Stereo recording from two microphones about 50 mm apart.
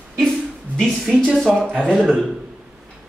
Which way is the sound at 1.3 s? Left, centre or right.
Centre.